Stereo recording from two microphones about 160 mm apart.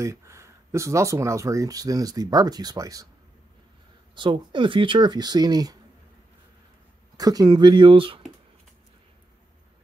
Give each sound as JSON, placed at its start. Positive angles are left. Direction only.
{"t": 0.0, "sound": "speech", "side_deg": -20}
{"t": 4.1, "sound": "speech", "side_deg": -30}
{"t": 7.2, "sound": "speech", "side_deg": -25}